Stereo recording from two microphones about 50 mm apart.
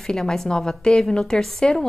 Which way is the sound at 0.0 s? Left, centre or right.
Centre.